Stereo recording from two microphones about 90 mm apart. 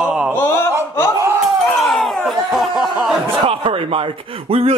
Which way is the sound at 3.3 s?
90° right.